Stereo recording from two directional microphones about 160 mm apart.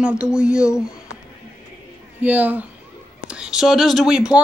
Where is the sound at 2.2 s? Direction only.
10° right (ahead or behind).